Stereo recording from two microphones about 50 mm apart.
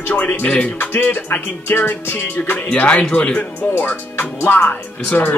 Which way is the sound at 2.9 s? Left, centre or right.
Centre.